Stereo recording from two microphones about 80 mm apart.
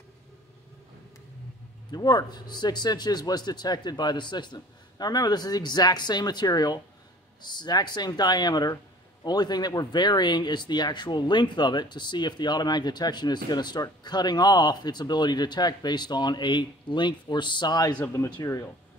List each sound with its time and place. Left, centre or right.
1.9 s speech: left
18.0 s speech: left